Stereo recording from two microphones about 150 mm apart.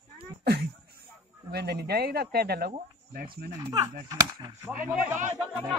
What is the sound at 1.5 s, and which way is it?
Speech, 90° right.